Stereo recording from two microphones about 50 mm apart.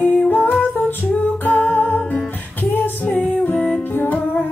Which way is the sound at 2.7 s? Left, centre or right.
Left.